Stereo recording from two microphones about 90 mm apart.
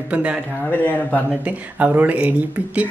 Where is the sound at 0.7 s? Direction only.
15° left (ahead or behind).